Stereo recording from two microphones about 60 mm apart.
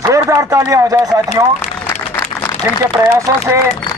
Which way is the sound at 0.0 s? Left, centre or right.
Right.